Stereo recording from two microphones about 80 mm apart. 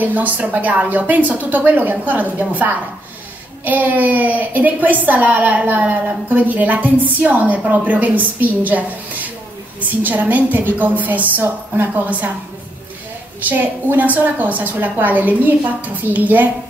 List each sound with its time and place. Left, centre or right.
0.0 s a woman's voice: centre
13.5 s a woman's voice: right